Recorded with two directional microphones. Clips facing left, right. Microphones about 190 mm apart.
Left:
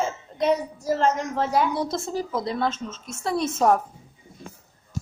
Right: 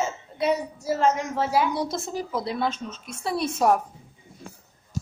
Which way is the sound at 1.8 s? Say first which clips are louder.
Left 2 dB; 25° left (ahead or behind).